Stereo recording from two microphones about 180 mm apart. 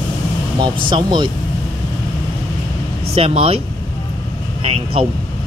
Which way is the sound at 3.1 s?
30° right (ahead or behind).